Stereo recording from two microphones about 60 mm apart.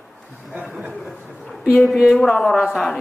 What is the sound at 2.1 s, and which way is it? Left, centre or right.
Speech, centre.